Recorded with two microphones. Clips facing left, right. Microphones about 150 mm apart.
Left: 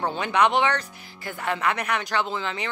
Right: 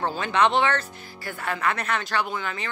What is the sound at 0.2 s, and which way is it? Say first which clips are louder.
A man's voice: even; 15° left (ahead or behind).